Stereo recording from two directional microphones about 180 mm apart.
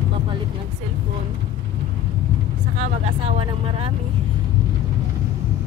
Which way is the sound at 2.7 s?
40° right (ahead or behind).